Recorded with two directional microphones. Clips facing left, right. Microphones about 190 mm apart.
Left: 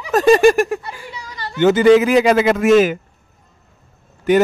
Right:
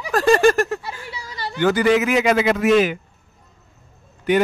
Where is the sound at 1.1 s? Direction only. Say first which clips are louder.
Even; 10° right (ahead or behind).